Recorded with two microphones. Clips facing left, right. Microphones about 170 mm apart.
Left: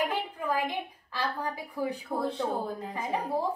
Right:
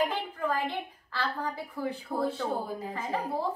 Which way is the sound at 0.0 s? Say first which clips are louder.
Right 1 dB; 10° left (ahead or behind).